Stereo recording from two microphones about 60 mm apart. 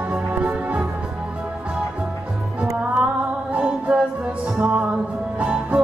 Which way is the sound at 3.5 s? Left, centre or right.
Right.